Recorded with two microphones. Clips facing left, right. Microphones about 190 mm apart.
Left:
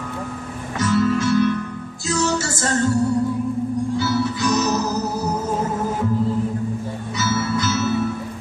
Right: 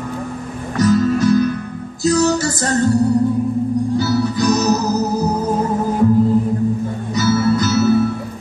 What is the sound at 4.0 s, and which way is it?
Music, 40° right (ahead or behind).